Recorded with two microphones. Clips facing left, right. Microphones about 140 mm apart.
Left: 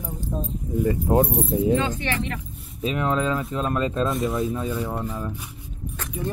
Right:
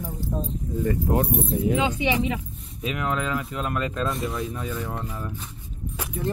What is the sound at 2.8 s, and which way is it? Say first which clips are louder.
Speech: left 4 dB; 30° left (ahead or behind).